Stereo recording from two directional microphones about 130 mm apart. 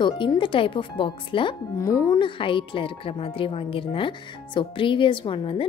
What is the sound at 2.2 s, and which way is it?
Speech, 40° left (ahead or behind).